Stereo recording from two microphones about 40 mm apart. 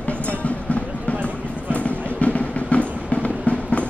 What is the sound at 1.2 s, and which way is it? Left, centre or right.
Vehicle, left.